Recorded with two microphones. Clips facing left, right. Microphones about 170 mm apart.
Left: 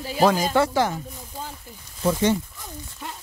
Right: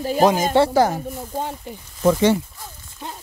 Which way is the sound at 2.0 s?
90° right.